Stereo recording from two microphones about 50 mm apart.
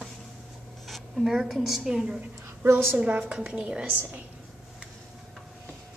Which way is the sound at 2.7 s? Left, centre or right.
Right.